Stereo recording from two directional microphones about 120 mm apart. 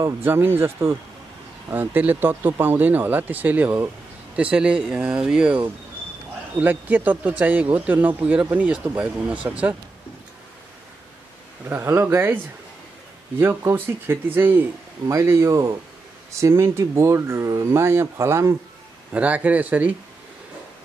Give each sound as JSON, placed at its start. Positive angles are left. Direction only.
{"t": 0.0, "sound": "speech", "side_deg": -15}
{"t": 6.6, "sound": "speech", "side_deg": -15}
{"t": 11.7, "sound": "speech", "side_deg": -20}
{"t": 13.4, "sound": "speech", "side_deg": -20}
{"t": 19.1, "sound": "speech", "side_deg": -10}